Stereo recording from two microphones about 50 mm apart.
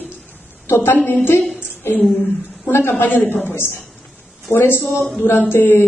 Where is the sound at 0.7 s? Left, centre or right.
Left.